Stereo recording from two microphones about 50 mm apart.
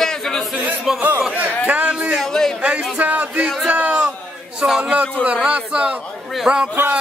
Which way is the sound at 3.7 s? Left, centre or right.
Right.